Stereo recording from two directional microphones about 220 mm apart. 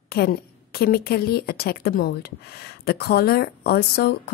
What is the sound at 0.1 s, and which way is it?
A woman's voice, 45° left (ahead or behind).